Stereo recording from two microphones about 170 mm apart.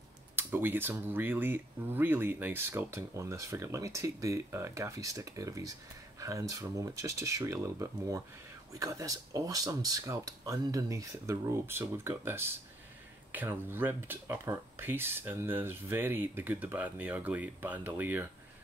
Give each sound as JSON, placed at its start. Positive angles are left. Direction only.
{"t": 0.4, "sound": "speech", "side_deg": -10}